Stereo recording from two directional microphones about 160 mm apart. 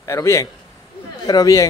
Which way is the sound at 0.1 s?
15° left (ahead or behind).